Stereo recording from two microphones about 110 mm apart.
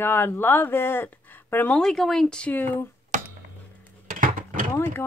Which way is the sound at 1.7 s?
5° left (ahead or behind).